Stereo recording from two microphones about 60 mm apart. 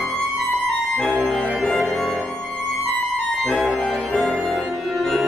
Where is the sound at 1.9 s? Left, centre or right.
Centre.